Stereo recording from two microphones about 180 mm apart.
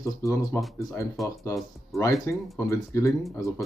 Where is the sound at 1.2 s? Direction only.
Centre (ahead or behind).